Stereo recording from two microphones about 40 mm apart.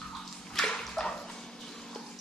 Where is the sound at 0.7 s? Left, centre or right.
Centre.